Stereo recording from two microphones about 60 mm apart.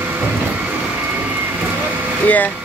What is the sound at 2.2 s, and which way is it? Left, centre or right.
Air conditioning, left.